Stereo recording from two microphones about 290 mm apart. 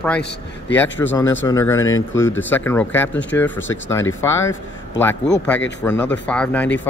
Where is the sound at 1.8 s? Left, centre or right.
Left.